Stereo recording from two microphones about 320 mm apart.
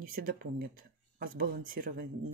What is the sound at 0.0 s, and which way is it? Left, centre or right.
Speech, right.